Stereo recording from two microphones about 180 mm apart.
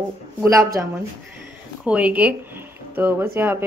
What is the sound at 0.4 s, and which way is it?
Speech, 20° right (ahead or behind).